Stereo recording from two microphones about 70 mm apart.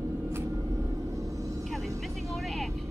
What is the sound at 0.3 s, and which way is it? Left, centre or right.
Vehicle, right.